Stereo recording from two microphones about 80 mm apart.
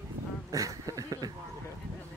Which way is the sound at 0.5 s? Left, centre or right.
Right.